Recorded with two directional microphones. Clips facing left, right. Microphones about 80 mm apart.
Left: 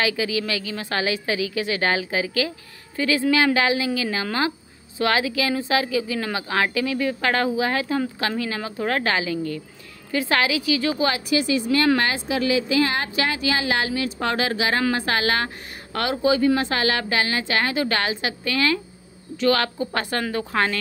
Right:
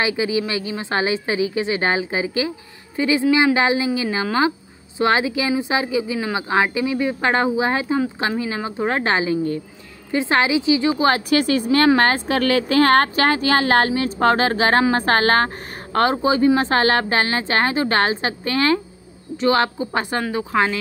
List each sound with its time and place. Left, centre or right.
0.0 s a woman's voice: right
3.5 s a woman's voice: right
11.1 s a woman's voice: right
16.6 s a woman's voice: right; by 20.8 s centre